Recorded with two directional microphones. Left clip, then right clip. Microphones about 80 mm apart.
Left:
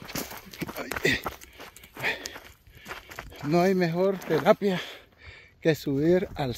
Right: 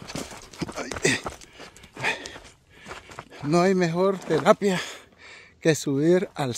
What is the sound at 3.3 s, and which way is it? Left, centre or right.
Speech, right.